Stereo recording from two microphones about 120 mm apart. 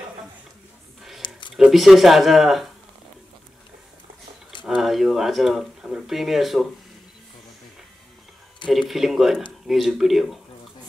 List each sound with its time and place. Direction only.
1.2 s a sound: 40° left (ahead or behind)
1.6 s speech: centre (ahead or behind)
4.6 s speech: centre (ahead or behind)
8.6 s speech: centre (ahead or behind)